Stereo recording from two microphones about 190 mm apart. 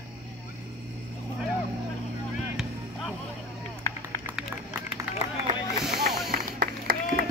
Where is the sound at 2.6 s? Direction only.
Centre (ahead or behind).